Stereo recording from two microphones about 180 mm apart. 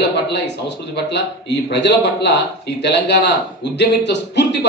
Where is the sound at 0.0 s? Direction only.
70° left (ahead or behind).